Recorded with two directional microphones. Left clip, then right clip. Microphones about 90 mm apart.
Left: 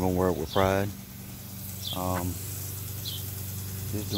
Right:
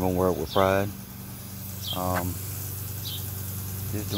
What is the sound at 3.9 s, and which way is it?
Speech, 90° left.